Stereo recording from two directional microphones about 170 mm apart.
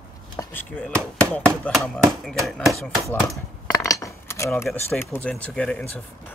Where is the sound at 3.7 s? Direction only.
20° left (ahead or behind).